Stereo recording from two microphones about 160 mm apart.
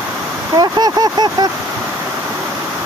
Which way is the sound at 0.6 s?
25° right (ahead or behind).